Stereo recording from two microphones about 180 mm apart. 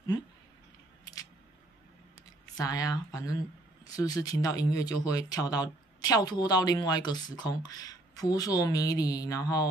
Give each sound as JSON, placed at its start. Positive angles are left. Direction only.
{"t": 2.5, "sound": "speech", "side_deg": 20}